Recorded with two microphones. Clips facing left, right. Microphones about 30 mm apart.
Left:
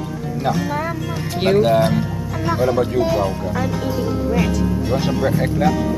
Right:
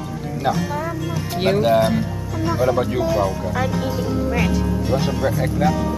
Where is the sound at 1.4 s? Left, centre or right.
Centre.